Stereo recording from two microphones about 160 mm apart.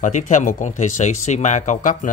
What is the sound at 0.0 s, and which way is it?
Speech, 50° left (ahead or behind).